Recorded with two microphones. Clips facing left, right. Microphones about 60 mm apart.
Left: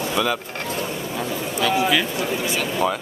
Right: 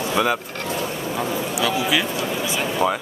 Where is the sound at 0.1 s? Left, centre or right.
Centre.